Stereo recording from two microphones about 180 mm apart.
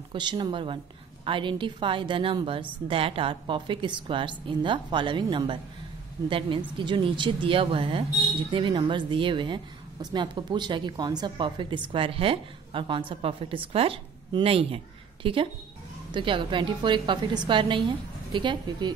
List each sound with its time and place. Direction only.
0.1 s a woman's voice: 25° right (ahead or behind)